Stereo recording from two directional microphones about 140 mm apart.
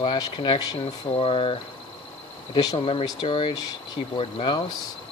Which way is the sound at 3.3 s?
40° left (ahead or behind).